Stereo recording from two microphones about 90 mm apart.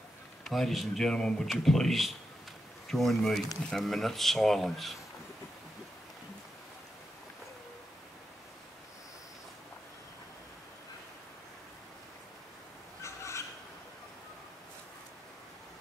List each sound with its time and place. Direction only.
0.4 s speech: centre (ahead or behind)
13.0 s bird: 30° left (ahead or behind)